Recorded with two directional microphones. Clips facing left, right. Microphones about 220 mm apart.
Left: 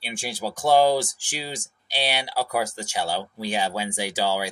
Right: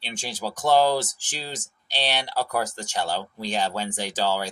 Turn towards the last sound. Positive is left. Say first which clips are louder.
# left 1 dB
turn(degrees=10)  # may be behind; listen again after turning